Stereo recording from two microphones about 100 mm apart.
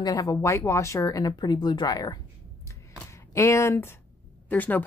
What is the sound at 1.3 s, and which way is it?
Speech, 45° left (ahead or behind).